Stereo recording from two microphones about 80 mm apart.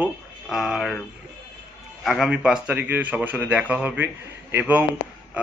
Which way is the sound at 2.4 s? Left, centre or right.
Centre.